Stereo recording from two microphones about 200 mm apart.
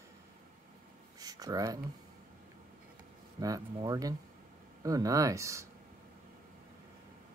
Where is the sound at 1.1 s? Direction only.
20° right (ahead or behind).